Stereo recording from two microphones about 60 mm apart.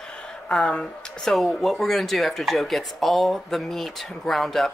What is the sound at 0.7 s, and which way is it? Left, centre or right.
Speech, centre.